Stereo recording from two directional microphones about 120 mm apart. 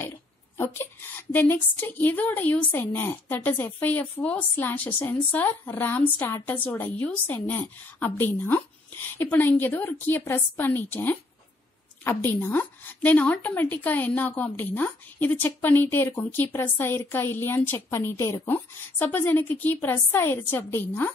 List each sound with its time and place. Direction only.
0.6 s a woman's voice: 15° left (ahead or behind)